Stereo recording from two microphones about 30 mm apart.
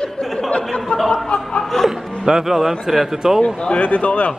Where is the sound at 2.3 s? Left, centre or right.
Centre.